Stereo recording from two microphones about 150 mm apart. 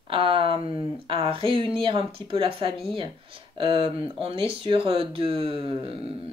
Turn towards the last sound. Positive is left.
turn(degrees=-35)  # may be behind; listen again after turning